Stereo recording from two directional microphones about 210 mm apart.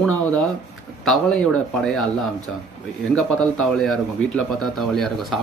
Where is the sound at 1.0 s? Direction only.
Centre (ahead or behind).